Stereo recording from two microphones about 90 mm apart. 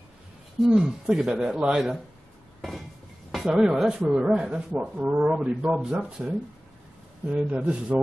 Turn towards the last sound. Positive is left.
turn(degrees=-10)  # may be behind; listen again after turning